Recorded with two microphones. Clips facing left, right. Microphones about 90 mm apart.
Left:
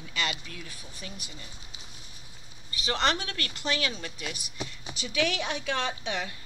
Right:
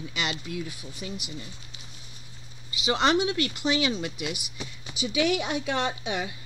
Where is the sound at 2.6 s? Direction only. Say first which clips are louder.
Right 4 dB; 15° right (ahead or behind).